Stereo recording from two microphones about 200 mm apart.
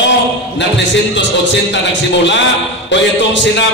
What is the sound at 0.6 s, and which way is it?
Speech, 60° left (ahead or behind).